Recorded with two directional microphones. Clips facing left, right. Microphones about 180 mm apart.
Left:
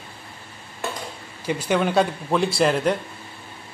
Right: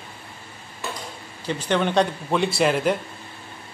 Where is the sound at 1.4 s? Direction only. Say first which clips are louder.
Left 1 dB; 10° left (ahead or behind).